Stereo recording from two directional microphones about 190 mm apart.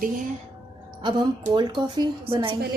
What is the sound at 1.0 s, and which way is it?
A woman's voice, 25° right (ahead or behind).